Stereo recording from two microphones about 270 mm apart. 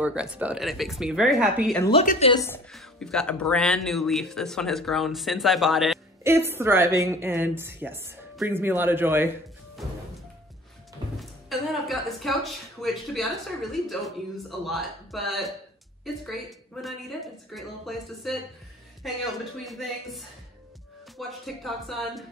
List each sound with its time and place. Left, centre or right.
0.0 s speech: centre
1.8 s a woman's voice: centre
2.4 s speech: centre
11.1 s speech: centre